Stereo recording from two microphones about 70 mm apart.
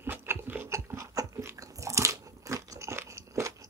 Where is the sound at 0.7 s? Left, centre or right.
Right.